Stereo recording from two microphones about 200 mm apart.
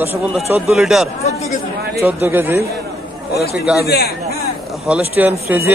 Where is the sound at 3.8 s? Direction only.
50° left (ahead or behind).